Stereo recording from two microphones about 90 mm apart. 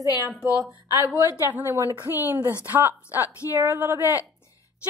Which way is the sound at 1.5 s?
25° right (ahead or behind).